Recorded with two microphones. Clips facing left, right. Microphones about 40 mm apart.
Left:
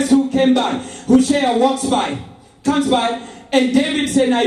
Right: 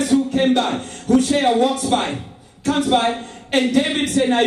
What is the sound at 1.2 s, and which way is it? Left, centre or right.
Speech, left.